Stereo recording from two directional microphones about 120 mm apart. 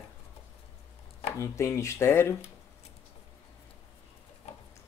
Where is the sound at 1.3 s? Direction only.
25° left (ahead or behind).